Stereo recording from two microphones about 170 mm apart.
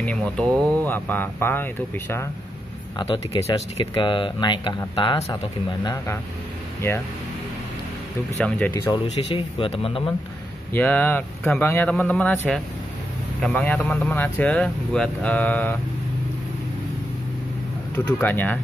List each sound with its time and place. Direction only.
0.0 s speech: 5° left (ahead or behind)
3.0 s speech: 30° left (ahead or behind)
6.8 s speech: 15° left (ahead or behind)
8.4 s speech: 10° left (ahead or behind)
9.3 s speech: 30° left (ahead or behind)
10.7 s speech: 10° left (ahead or behind)
17.9 s speech: 10° left (ahead or behind)